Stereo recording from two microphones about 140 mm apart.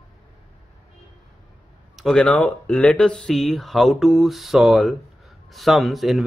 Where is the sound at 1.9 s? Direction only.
5° left (ahead or behind).